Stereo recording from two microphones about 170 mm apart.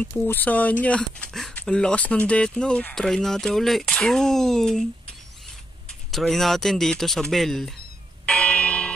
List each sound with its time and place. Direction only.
0.0 s speech: 10° left (ahead or behind)
5.9 s speech: centre (ahead or behind)
8.3 s church bell: 5° left (ahead or behind)